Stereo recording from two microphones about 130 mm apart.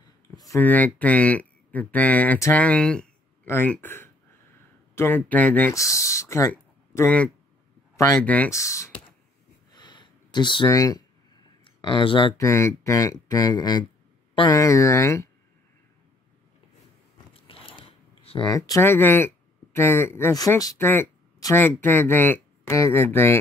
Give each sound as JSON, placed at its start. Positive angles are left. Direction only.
{"t": 0.6, "sound": "speech", "side_deg": 10}
{"t": 3.4, "sound": "speech", "side_deg": 15}
{"t": 5.8, "sound": "speech", "side_deg": 25}
{"t": 8.2, "sound": "speech", "side_deg": 10}
{"t": 8.5, "sound": "speech", "side_deg": 25}
{"t": 9.7, "sound": "a sound", "side_deg": 35}
{"t": 10.7, "sound": "speech", "side_deg": 25}
{"t": 11.6, "sound": "speech", "side_deg": 40}
{"t": 12.4, "sound": "speech", "side_deg": 20}
{"t": 17.3, "sound": "biting", "side_deg": 45}
{"t": 17.6, "sound": "a sound", "side_deg": 45}
{"t": 18.5, "sound": "speech", "side_deg": 25}